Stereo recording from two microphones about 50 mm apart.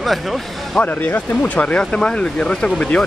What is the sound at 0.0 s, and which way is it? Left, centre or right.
Speech, centre.